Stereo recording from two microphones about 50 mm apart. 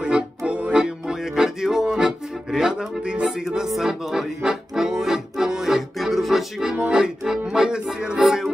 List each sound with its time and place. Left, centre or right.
0.5 s music: right; by 6.4 s centre
6.9 s music: centre
8.2 s music: centre